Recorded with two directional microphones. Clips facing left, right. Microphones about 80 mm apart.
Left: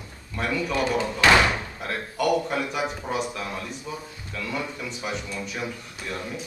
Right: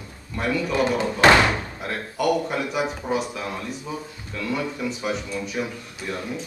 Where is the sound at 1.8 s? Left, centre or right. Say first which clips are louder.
Right 1 dB; centre.